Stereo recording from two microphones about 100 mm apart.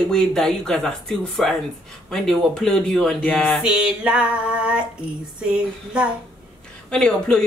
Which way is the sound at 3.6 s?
10° right (ahead or behind).